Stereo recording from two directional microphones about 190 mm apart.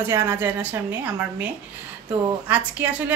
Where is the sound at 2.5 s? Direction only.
10° right (ahead or behind).